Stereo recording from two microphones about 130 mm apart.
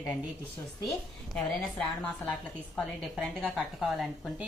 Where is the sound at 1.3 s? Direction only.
5° left (ahead or behind).